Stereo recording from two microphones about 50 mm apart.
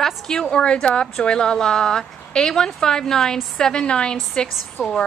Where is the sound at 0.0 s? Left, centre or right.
Centre.